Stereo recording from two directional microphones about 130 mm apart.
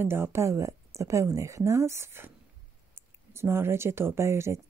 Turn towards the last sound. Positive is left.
turn(degrees=-20)  # may be behind; listen again after turning